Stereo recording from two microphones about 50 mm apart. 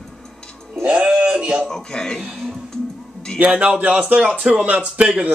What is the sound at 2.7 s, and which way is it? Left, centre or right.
Music, centre.